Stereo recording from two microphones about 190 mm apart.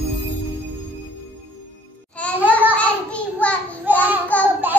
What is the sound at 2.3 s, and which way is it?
Babbling, 10° right (ahead or behind).